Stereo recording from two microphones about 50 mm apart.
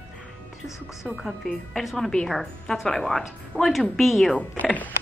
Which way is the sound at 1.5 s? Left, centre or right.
Centre.